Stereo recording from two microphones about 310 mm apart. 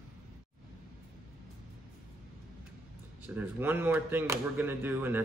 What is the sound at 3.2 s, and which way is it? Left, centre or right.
Speech, centre.